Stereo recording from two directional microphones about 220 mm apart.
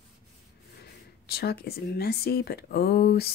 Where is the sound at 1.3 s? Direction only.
45° left (ahead or behind).